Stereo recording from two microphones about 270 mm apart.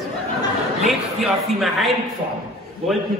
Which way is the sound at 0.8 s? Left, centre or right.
Centre.